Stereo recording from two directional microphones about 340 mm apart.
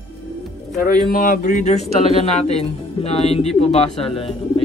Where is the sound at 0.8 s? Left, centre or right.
Left.